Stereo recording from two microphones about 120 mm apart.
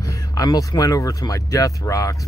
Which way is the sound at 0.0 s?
30° left (ahead or behind).